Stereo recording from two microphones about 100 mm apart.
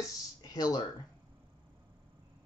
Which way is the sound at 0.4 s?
40° left (ahead or behind).